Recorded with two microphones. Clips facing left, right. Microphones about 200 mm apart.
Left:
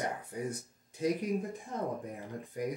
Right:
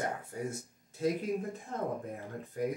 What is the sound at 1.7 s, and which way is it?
Speech, 15° left (ahead or behind).